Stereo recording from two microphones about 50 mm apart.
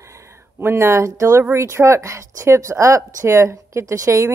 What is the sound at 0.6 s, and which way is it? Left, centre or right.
Speech, right.